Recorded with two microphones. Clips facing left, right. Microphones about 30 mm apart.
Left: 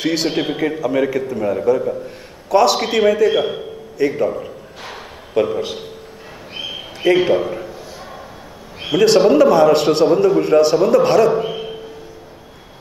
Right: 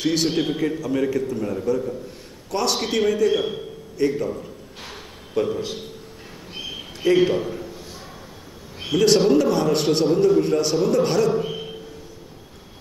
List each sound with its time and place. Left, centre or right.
0.0 s a man's voice: centre; by 1.7 s left
2.5 s a man's voice: left
4.8 s a sound: left
5.6 s a man's voice: centre
6.5 s a sound: left
8.8 s a man's voice: centre